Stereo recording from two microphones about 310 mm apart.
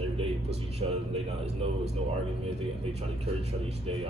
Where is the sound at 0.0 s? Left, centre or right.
Centre.